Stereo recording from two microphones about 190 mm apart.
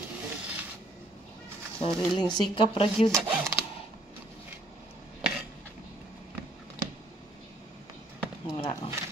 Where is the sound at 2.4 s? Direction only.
30° left (ahead or behind).